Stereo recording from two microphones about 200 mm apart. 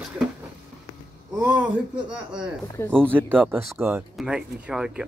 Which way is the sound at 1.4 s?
5° right (ahead or behind).